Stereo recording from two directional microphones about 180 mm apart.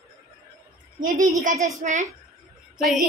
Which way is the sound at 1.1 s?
20° right (ahead or behind).